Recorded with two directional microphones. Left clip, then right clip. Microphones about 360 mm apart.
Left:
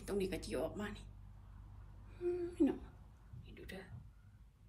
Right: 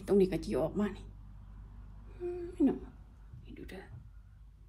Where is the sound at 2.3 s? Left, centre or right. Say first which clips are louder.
Right 3 dB; centre.